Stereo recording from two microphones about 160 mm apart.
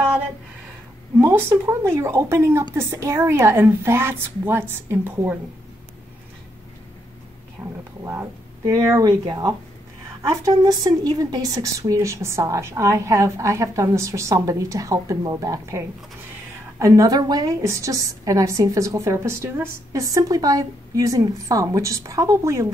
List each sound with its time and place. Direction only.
1.1 s a woman's voice: 15° right (ahead or behind)
7.6 s a sound: 20° right (ahead or behind)
8.0 s a woman's voice: 15° right (ahead or behind)